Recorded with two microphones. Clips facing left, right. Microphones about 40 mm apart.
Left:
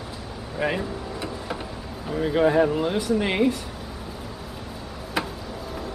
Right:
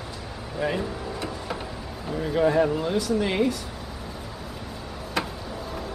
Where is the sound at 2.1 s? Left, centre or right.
Centre.